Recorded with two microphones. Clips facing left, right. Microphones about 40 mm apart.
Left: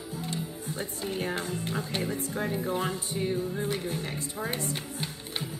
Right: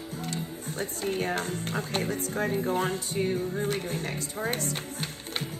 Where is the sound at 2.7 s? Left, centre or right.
Right.